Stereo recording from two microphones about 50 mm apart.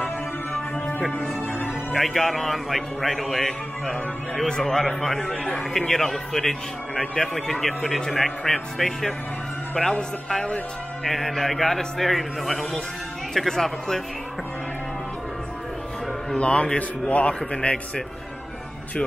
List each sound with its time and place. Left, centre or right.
0.5 s music: left
2.0 s a man's voice: centre
11.1 s a man's voice: centre
16.3 s a man's voice: left